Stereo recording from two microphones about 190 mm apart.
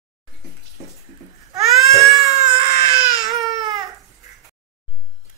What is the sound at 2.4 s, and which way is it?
Baby cry, 35° right (ahead or behind).